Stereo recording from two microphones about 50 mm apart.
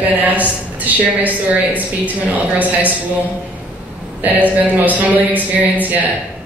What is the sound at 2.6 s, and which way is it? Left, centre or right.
Speech, right.